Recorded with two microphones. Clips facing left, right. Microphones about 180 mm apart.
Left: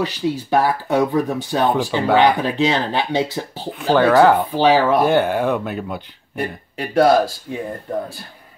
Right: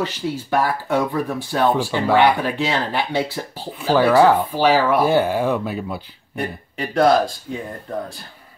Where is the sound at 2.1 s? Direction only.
20° left (ahead or behind).